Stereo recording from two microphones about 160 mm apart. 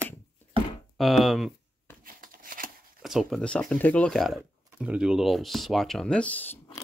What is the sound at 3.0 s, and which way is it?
Speech, centre (ahead or behind).